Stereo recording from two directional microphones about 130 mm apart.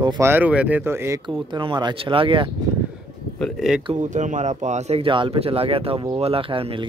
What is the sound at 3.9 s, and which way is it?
Speech, 70° right (ahead or behind).